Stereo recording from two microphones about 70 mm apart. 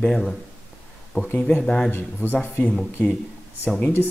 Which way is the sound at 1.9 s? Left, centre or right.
Left.